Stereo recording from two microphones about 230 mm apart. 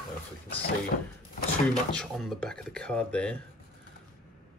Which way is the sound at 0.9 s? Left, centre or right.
Left.